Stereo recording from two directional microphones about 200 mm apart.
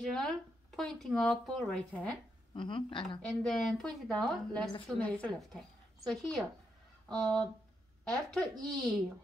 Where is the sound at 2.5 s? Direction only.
25° left (ahead or behind).